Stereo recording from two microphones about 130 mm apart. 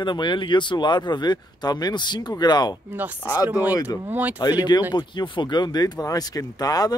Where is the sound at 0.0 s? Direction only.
35° left (ahead or behind).